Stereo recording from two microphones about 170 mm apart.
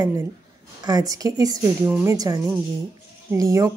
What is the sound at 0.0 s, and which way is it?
A woman's voice, 15° right (ahead or behind).